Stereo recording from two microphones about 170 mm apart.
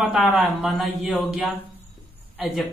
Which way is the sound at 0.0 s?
5° right (ahead or behind).